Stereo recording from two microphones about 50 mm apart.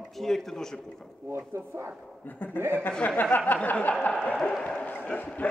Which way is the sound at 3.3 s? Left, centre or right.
Left.